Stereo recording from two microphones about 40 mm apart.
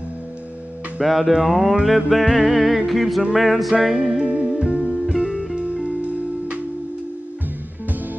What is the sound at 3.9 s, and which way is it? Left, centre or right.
Music, right.